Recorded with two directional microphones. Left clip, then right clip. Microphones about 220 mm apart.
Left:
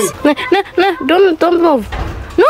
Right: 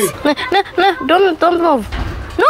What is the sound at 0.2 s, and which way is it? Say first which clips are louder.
Speech: left 3 dB; 15° left (ahead or behind).